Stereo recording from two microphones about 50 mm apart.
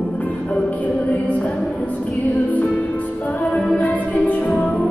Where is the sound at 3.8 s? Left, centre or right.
Left.